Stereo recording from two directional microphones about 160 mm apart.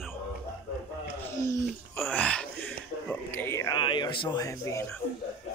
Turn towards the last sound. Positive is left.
turn(degrees=20)  # may be behind; listen again after turning